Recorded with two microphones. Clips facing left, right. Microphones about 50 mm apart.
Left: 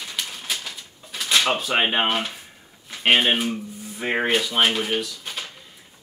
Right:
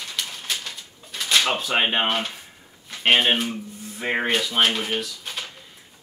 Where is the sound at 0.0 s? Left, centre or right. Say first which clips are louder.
Even; centre.